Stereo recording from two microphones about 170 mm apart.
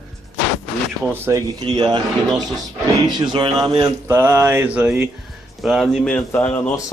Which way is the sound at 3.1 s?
25° right (ahead or behind).